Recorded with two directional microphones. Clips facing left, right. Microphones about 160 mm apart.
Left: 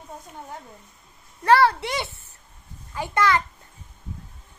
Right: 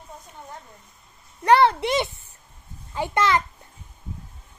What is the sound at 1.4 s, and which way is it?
A child's voice, 20° right (ahead or behind).